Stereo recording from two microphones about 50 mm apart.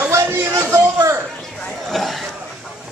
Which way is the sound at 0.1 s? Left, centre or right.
Right.